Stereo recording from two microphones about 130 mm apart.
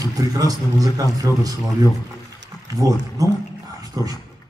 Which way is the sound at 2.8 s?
30° right (ahead or behind).